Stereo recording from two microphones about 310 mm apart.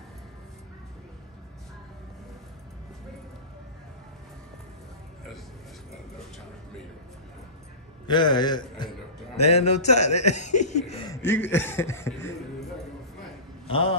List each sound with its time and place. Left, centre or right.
8.1 s a man's voice: centre
11.2 s speech: centre
13.7 s a man's voice: centre